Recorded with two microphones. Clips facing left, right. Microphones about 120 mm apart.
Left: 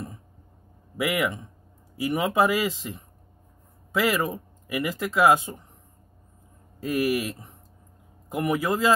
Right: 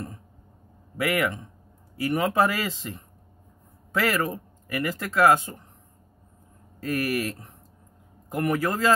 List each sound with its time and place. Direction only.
0.9 s speech: 5° left (ahead or behind)
6.8 s speech: 10° left (ahead or behind)